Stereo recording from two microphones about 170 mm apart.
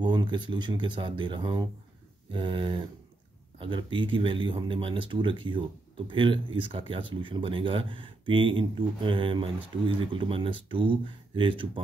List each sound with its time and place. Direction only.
0.0 s speech: 25° right (ahead or behind)